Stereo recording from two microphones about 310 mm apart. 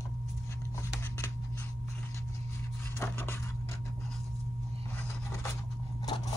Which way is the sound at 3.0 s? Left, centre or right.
Centre.